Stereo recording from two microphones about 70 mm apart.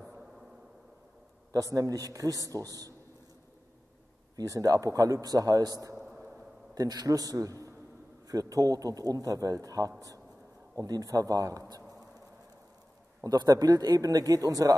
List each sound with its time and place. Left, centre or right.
1.5 s a man's voice: right
4.4 s a man's voice: right
5.9 s a sound: centre
6.7 s a man's voice: right
13.2 s a man's voice: right